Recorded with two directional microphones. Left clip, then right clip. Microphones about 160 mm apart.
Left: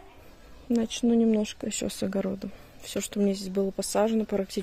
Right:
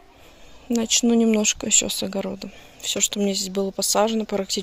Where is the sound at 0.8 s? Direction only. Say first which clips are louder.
Right 7 dB; 5° right (ahead or behind).